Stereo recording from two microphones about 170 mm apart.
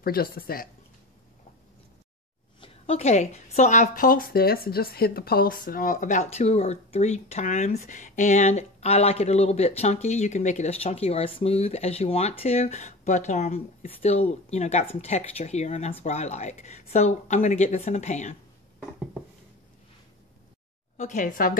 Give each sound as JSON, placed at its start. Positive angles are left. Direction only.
{"t": 0.0, "sound": "speech", "side_deg": 60}
{"t": 2.6, "sound": "speech", "side_deg": 40}
{"t": 21.0, "sound": "speech", "side_deg": 50}